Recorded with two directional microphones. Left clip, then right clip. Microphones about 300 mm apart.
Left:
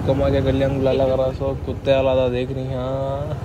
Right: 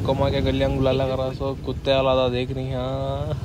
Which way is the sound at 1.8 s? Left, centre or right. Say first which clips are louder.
Left 2 dB; centre.